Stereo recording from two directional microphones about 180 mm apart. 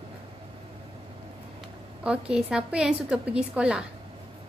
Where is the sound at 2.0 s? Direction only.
5° right (ahead or behind).